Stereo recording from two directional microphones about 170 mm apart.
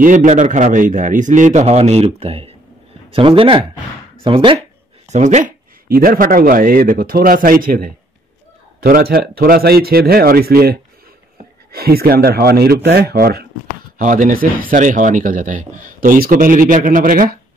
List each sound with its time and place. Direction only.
0.0 s speech: 50° right (ahead or behind); by 4.6 s 30° right (ahead or behind)
5.1 s speech: 45° right (ahead or behind); by 13.5 s 70° right (ahead or behind)
13.9 s speech: 50° right (ahead or behind)